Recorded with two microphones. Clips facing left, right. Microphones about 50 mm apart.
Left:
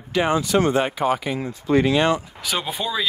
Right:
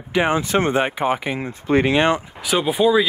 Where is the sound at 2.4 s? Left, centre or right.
Centre.